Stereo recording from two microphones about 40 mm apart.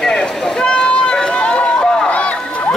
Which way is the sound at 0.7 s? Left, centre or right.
Left.